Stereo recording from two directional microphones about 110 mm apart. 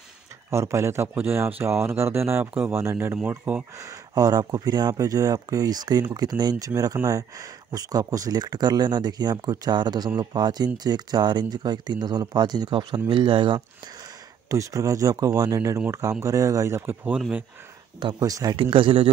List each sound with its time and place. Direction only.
0.5 s speech: 25° right (ahead or behind)
3.8 s speech: 35° right (ahead or behind)
14.5 s speech: 30° right (ahead or behind)
18.2 s speech: 35° right (ahead or behind)
18.6 s speech: 55° right (ahead or behind)